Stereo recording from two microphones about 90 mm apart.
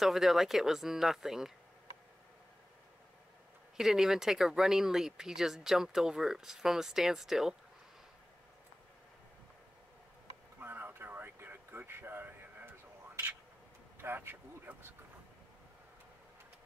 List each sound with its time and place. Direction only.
0.0 s speech: centre (ahead or behind)
3.7 s speech: 5° right (ahead or behind)
10.6 s a sound: 25° right (ahead or behind)
13.9 s vehicle: 25° right (ahead or behind)